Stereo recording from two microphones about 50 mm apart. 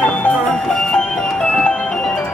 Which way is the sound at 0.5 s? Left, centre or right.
Centre.